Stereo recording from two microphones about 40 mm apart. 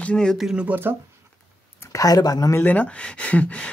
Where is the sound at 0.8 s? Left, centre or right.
Right.